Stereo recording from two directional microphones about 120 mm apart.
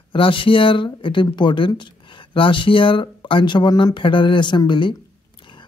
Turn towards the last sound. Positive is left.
turn(degrees=40)  # may be behind; listen again after turning